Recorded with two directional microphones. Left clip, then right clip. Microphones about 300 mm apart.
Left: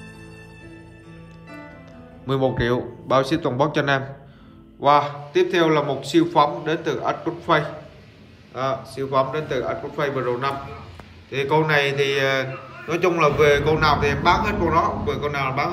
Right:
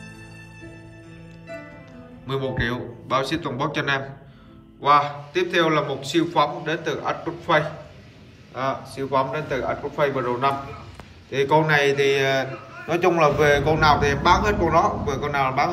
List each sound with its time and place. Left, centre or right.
2.2 s a man's voice: centre
8.9 s a man's voice: centre